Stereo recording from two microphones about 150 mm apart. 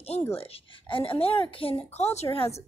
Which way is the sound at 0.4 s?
35° left (ahead or behind).